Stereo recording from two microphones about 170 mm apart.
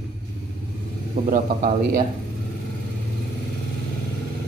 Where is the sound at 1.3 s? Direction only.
55° right (ahead or behind).